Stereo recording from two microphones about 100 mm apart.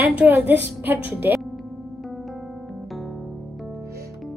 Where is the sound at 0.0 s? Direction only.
20° right (ahead or behind).